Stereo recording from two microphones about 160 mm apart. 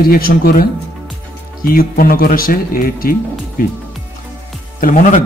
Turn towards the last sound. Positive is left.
turn(degrees=50)  # may be behind; listen again after turning